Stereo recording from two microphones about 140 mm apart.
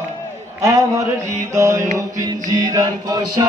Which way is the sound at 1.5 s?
20° right (ahead or behind).